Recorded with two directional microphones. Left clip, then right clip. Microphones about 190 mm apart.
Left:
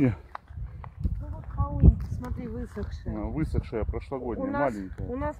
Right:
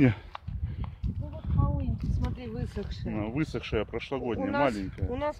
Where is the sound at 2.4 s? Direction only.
25° right (ahead or behind).